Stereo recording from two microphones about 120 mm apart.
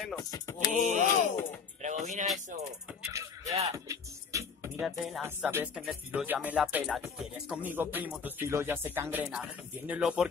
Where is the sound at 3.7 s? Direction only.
25° right (ahead or behind).